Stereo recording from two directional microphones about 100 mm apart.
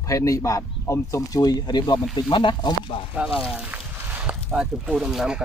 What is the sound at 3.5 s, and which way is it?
Speech, 10° right (ahead or behind).